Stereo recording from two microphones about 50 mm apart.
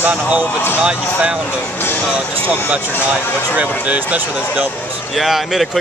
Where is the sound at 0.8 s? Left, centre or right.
Centre.